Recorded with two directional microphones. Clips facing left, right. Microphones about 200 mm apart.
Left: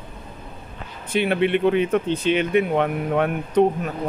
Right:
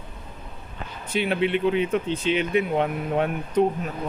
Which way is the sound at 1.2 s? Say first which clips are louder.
Left 3 dB; 55° left (ahead or behind).